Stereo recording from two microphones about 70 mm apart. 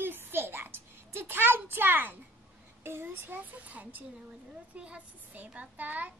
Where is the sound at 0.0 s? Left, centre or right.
Right.